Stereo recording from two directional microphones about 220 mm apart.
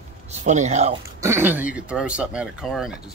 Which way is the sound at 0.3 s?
30° right (ahead or behind).